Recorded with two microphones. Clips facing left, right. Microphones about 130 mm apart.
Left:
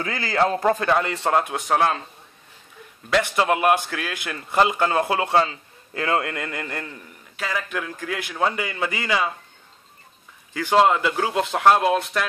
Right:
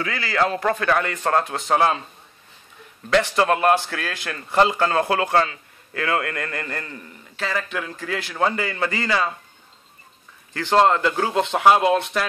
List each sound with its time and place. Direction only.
0.0 s a man's voice: 30° left (ahead or behind); by 1.6 s 15° left (ahead or behind)
1.7 s speech: centre (ahead or behind)
3.3 s speech: 10° left (ahead or behind)
10.5 s speech: 10° left (ahead or behind)